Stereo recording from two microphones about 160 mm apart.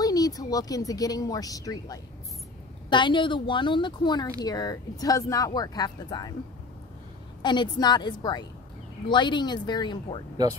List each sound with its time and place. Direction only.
0.0 s a woman's voice: 25° left (ahead or behind)
7.4 s speech: 25° left (ahead or behind)